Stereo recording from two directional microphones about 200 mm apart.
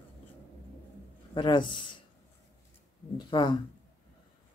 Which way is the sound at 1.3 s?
25° left (ahead or behind).